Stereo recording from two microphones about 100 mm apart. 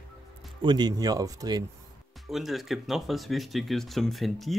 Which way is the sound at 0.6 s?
45° right (ahead or behind).